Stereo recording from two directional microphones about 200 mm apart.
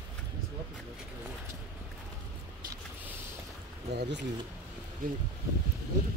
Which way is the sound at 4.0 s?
60° right (ahead or behind).